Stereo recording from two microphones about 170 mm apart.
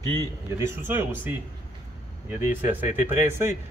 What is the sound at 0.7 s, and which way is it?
Speech, 15° right (ahead or behind).